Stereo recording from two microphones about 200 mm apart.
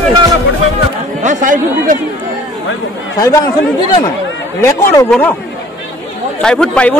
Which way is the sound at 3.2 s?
15° left (ahead or behind).